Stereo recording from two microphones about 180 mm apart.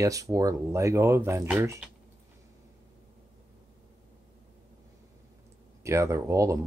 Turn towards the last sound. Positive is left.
turn(degrees=-15)  # may be behind; listen again after turning